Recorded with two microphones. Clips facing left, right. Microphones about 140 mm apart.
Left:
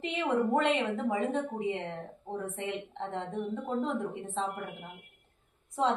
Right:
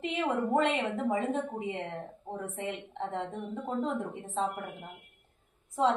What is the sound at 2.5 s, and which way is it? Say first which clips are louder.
A woman's voice: left 1 dB; centre (ahead or behind).